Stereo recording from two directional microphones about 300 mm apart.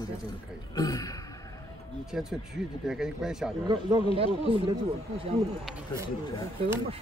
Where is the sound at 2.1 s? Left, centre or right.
Centre.